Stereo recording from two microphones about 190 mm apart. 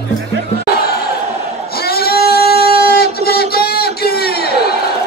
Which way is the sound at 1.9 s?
55° left (ahead or behind).